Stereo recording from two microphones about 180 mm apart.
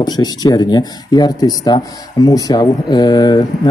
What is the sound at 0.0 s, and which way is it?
Speech, 20° left (ahead or behind).